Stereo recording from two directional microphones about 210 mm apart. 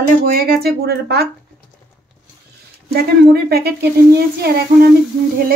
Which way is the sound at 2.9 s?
50° right (ahead or behind).